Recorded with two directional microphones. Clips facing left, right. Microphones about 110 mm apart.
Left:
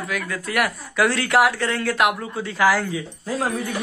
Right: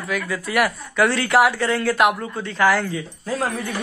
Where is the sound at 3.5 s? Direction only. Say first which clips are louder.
Left 1 dB; 15° left (ahead or behind).